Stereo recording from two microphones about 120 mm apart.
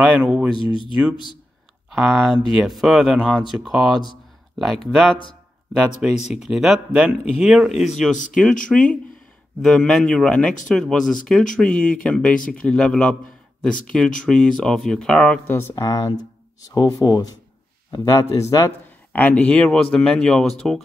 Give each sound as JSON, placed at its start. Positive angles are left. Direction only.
{"t": 0.2, "sound": "a man's voice", "side_deg": -10}
{"t": 0.6, "sound": "speech", "side_deg": 45}
{"t": 1.9, "sound": "speech", "side_deg": 0}
{"t": 8.6, "sound": "speech", "side_deg": 10}
{"t": 15.7, "sound": "speech", "side_deg": 35}
{"t": 19.1, "sound": "speech", "side_deg": 15}